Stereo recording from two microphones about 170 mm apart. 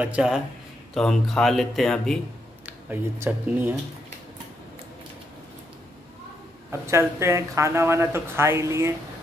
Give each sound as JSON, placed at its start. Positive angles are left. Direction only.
{"t": 0.0, "sound": "speech", "side_deg": -5}
{"t": 2.9, "sound": "a woman's voice", "side_deg": -10}
{"t": 6.7, "sound": "a woman's voice", "side_deg": -15}